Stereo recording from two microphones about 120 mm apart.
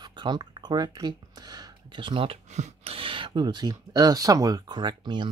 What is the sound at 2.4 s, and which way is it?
Speech, 75° right (ahead or behind).